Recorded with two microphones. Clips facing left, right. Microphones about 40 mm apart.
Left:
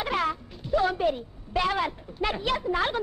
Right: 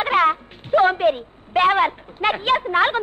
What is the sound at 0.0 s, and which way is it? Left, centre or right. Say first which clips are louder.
A child's voice: right 10 dB; right.